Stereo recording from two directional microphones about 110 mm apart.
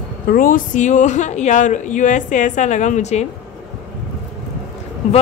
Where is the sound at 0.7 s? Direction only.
90° left.